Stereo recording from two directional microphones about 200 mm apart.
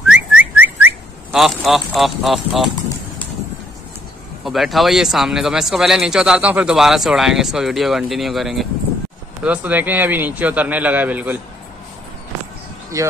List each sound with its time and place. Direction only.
0.1 s whistling: 5° right (ahead or behind)
4.5 s a man's voice: centre (ahead or behind)
12.9 s a man's voice: 15° right (ahead or behind)